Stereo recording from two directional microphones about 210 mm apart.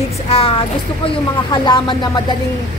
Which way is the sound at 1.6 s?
20° left (ahead or behind).